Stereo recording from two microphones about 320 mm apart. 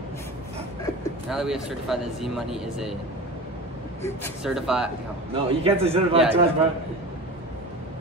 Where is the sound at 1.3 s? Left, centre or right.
Centre.